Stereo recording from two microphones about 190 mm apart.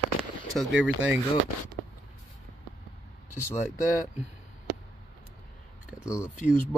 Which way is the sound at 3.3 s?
15° left (ahead or behind).